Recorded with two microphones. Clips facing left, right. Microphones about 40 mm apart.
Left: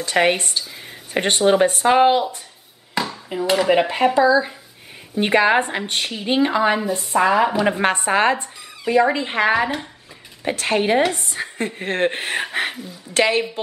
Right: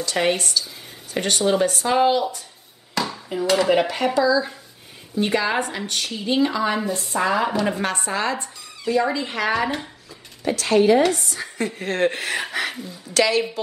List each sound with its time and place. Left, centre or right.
0.0 s speech: left
3.3 s a woman's voice: centre
3.8 s a woman's voice: left
7.8 s speech: left